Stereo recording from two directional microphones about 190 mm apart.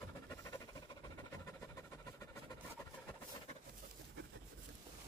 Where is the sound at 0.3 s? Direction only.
15° left (ahead or behind).